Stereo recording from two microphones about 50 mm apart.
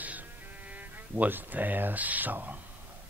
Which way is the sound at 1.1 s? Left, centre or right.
Right.